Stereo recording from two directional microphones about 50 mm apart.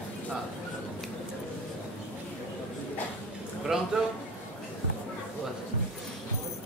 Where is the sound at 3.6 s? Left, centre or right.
Centre.